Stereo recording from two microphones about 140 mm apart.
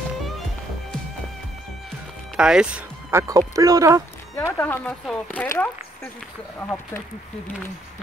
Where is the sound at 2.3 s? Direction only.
5° right (ahead or behind); by 4.0 s 25° right (ahead or behind).